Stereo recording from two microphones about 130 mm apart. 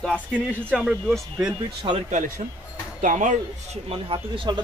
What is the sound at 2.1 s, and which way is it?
Speech, 70° right (ahead or behind).